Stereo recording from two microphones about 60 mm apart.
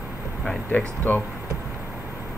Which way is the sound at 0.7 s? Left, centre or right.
Left.